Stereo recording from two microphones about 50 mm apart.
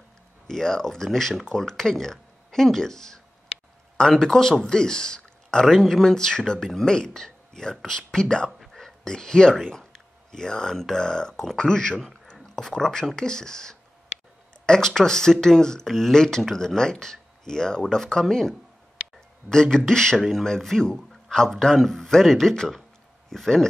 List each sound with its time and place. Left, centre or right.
0.5 s a man's voice: centre
19.5 s a man's voice: centre
21.1 s a sound: centre
21.5 s a man's voice: centre